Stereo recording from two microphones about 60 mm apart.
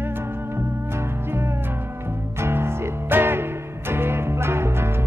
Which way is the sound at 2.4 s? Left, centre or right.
Right.